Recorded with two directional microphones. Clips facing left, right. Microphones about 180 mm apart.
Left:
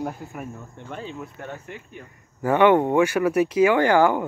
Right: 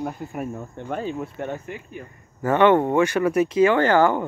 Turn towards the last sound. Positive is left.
turn(degrees=10)  # may be behind; listen again after turning